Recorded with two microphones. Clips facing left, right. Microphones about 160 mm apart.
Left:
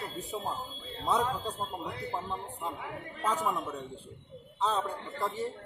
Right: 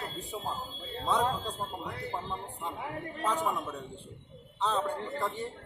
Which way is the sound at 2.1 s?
Centre (ahead or behind).